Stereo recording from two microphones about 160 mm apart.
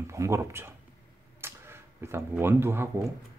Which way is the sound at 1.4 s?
15° right (ahead or behind).